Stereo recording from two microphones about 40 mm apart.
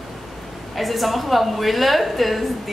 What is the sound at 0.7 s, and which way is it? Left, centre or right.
A woman's voice, centre.